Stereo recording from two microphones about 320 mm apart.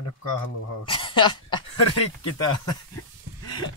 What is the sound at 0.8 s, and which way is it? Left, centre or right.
Speech, centre.